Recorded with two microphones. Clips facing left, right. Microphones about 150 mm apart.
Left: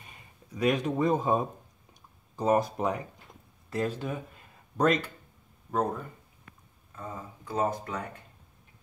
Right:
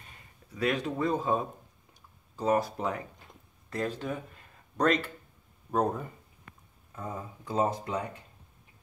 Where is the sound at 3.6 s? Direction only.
5° left (ahead or behind).